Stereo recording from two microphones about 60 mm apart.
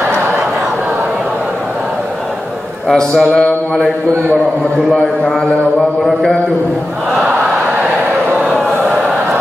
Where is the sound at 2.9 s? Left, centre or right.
Centre.